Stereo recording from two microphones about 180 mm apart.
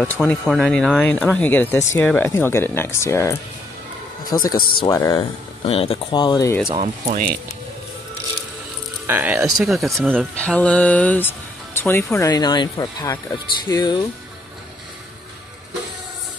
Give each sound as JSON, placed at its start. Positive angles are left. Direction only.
{"t": 0.0, "sound": "speech", "side_deg": 10}
{"t": 4.6, "sound": "speech", "side_deg": 55}
{"t": 4.8, "sound": "speech", "side_deg": 15}
{"t": 5.6, "sound": "speech", "side_deg": 30}
{"t": 6.7, "sound": "speech", "side_deg": -35}
{"t": 9.0, "sound": "speech", "side_deg": -10}